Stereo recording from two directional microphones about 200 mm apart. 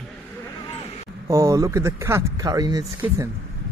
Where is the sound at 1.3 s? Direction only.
15° right (ahead or behind).